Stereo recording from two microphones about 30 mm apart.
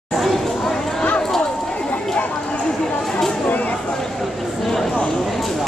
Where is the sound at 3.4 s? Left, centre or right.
Left.